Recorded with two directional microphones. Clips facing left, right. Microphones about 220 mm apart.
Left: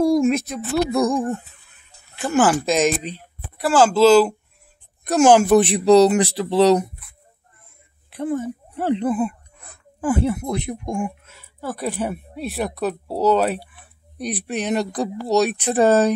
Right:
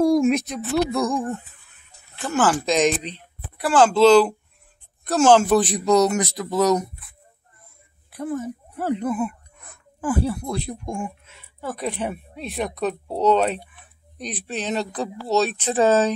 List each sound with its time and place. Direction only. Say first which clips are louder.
0.0 s speech: even; centre (ahead or behind)
0.9 s speech: left 4 dB; 15° left (ahead or behind)
5.0 s speech: left 2 dB; 15° left (ahead or behind)
5.6 s speech: left 5 dB; 30° left (ahead or behind)
8.1 s speech: left 3 dB; 25° left (ahead or behind)
11.2 s speech: left 2 dB; centre (ahead or behind)